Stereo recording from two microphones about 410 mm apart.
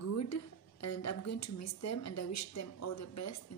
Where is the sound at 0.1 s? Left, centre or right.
Left.